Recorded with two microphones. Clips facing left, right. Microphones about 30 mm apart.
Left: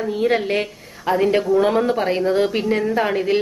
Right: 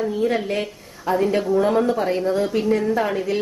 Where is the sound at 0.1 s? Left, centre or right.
Left.